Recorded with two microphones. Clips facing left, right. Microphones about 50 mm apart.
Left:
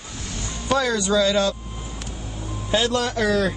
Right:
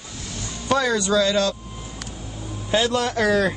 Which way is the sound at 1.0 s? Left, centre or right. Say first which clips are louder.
Even; centre.